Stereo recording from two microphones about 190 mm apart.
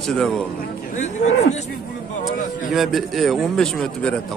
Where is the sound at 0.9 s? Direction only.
35° left (ahead or behind).